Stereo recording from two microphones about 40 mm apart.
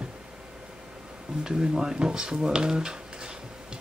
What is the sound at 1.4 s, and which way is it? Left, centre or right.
Speech, centre.